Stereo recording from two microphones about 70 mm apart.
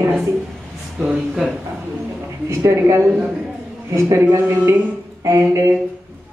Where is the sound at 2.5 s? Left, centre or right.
Right.